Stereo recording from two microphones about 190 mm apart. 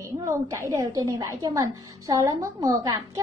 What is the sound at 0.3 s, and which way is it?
A woman's voice, 15° right (ahead or behind).